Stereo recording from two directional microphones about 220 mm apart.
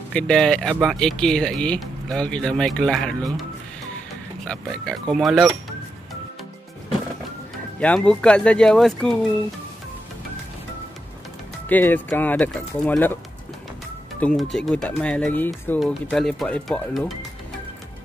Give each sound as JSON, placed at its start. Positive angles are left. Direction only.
{"t": 0.1, "sound": "speech", "side_deg": 5}
{"t": 4.5, "sound": "speech", "side_deg": 0}
{"t": 7.8, "sound": "speech", "side_deg": 5}
{"t": 11.7, "sound": "speech", "side_deg": 10}
{"t": 14.2, "sound": "speech", "side_deg": 0}